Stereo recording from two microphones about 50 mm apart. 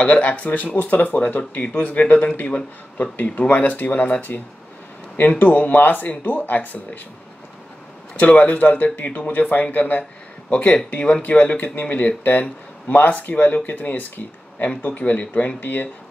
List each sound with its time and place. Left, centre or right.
0.0 s speech: left
8.2 s speech: left
10.5 s speech: left